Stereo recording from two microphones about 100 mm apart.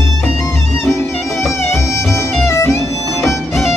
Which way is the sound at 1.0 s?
25° left (ahead or behind).